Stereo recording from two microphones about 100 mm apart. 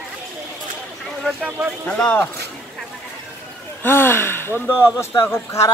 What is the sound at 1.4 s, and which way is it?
Speech, 15° right (ahead or behind).